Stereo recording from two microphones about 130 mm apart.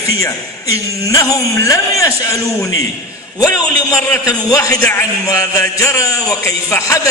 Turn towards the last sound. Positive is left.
turn(degrees=25)  # may be behind; listen again after turning